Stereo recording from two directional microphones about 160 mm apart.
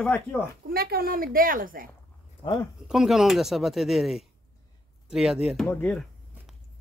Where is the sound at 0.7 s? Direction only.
75° right (ahead or behind).